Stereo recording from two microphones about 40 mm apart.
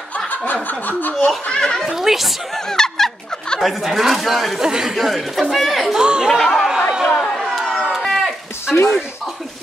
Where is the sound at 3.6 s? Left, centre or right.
Centre.